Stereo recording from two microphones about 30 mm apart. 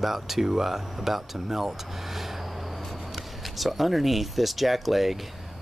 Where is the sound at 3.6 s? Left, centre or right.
Centre.